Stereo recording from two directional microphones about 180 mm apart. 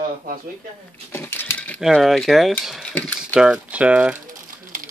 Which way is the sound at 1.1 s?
10° left (ahead or behind).